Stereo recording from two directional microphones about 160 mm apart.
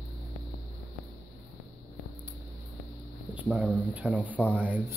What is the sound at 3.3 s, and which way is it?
Speech, 10° right (ahead or behind).